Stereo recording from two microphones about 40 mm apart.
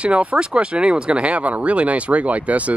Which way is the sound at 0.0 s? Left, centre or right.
Right.